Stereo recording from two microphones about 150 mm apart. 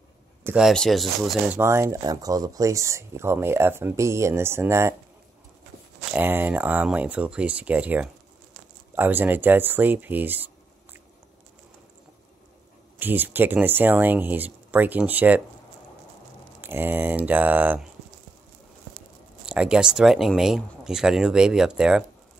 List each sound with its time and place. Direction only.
0.6 s speech: centre (ahead or behind)
1.5 s speech: 15° right (ahead or behind)
6.1 s speech: 15° right (ahead or behind)
13.0 s speech: 15° right (ahead or behind)
16.6 s speech: 15° right (ahead or behind)
19.4 s speech: 5° right (ahead or behind)